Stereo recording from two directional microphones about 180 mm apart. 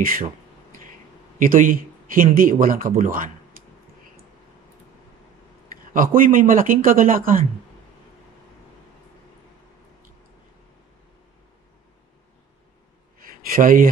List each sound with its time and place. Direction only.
0.0 s speech: 55° right (ahead or behind)
1.4 s speech: 50° right (ahead or behind)
5.9 s speech: 50° right (ahead or behind)
13.2 s speech: 50° right (ahead or behind)